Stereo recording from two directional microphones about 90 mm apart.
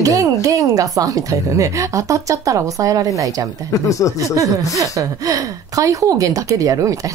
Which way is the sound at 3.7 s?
35° left (ahead or behind).